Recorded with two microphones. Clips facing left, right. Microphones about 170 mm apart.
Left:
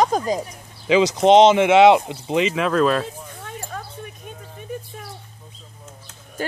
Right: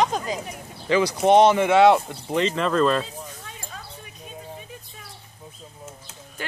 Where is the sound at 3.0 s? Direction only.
55° left (ahead or behind).